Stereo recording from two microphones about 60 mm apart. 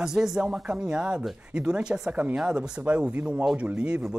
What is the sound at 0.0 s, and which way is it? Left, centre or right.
Speech, centre.